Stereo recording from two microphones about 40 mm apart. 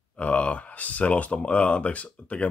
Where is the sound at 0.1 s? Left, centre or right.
Left.